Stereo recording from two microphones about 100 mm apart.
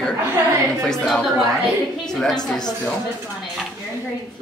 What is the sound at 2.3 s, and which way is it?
Speech, 45° left (ahead or behind).